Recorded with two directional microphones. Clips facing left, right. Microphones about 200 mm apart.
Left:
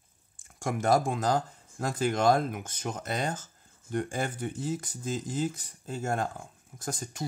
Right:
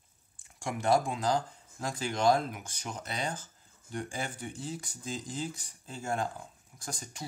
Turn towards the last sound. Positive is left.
turn(degrees=50)  # may be behind; listen again after turning